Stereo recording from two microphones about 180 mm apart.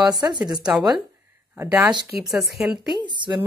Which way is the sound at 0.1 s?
20° right (ahead or behind).